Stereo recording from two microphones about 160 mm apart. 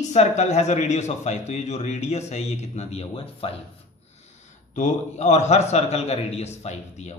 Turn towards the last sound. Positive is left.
turn(degrees=45)  # may be behind; listen again after turning